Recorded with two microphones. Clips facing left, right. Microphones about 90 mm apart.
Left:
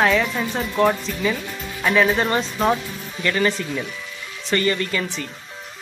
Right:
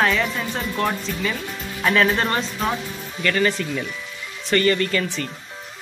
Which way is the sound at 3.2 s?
20° left (ahead or behind).